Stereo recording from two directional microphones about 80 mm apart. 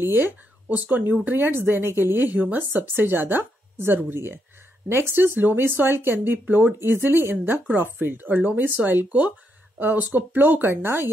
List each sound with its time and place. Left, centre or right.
0.0 s speech: right